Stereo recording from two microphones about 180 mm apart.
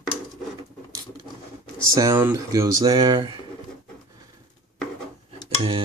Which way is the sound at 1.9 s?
15° right (ahead or behind).